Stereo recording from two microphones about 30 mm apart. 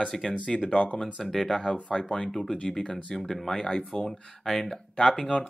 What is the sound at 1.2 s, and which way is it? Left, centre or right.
Speech, centre.